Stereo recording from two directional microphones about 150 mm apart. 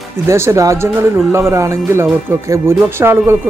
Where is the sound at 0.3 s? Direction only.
20° right (ahead or behind).